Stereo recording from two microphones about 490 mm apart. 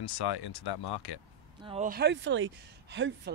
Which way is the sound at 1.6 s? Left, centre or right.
Centre.